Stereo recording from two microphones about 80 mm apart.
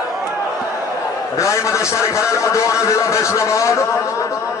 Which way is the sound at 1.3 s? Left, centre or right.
Left.